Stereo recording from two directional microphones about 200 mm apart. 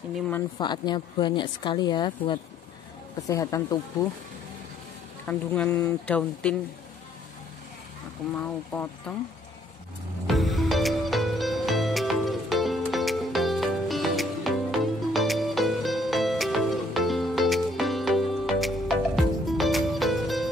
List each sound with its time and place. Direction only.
0.6 s a woman's voice: 20° left (ahead or behind)
5.2 s speech: 10° left (ahead or behind)
8.4 s speech: 5° left (ahead or behind)
10.2 s music: centre (ahead or behind)